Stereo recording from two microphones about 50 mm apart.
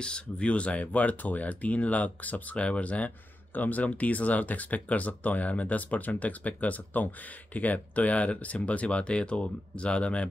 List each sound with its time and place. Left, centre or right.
0.0 s speech: left